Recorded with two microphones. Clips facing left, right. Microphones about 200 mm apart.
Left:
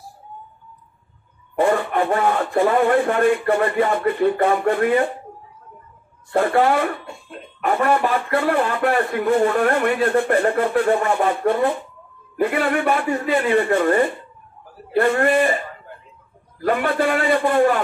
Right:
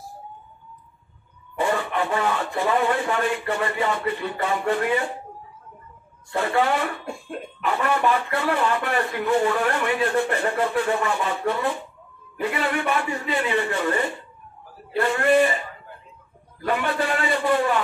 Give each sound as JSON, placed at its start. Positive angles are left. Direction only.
{"t": 1.6, "sound": "speech", "side_deg": 50}
{"t": 6.3, "sound": "speech", "side_deg": 50}